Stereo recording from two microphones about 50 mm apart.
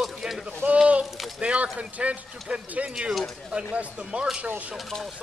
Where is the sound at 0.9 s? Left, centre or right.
Right.